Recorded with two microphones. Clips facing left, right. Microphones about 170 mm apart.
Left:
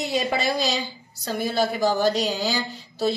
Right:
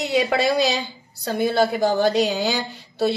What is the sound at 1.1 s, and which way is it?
A woman's voice, 60° right (ahead or behind).